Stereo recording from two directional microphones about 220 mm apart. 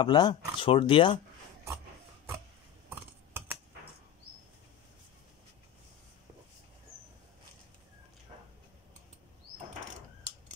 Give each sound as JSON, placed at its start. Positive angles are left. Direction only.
{"t": 0.0, "sound": "speech", "side_deg": 20}
{"t": 2.9, "sound": "computer keyboard", "side_deg": -10}